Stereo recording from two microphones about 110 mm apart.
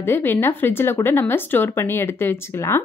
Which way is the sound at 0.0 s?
20° left (ahead or behind).